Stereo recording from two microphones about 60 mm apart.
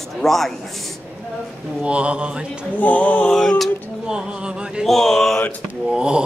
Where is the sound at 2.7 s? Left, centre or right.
Left.